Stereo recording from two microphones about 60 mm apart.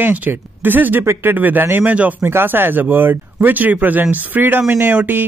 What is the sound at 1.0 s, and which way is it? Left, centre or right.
Speech, right.